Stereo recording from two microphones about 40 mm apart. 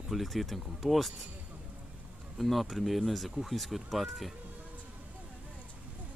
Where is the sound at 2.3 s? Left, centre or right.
Centre.